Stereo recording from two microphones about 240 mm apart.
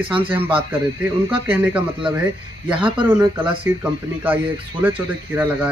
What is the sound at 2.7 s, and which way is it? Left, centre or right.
Speech, right.